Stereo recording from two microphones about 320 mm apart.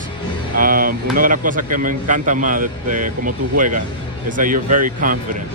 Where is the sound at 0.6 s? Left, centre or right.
Right.